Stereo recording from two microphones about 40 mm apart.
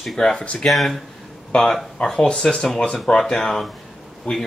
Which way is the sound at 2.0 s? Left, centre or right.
Centre.